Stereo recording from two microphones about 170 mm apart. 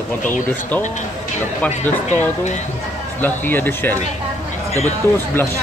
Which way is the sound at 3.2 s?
10° left (ahead or behind).